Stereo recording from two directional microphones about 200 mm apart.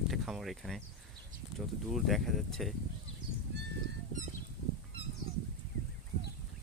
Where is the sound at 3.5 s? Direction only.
55° right (ahead or behind).